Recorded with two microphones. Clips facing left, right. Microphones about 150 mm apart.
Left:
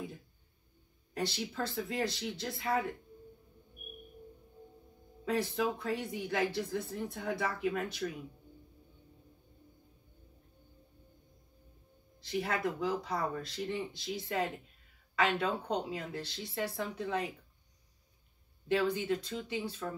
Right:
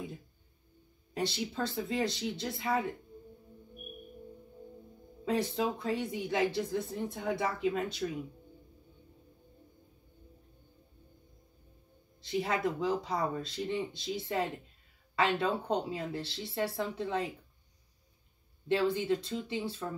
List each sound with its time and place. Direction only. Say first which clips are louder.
1.1 s speech: right 2 dB; 25° right (ahead or behind)
5.2 s speech: right 1 dB; 25° right (ahead or behind)
12.3 s speech: right 2 dB; 20° right (ahead or behind)
18.7 s speech: right 2 dB; 25° right (ahead or behind)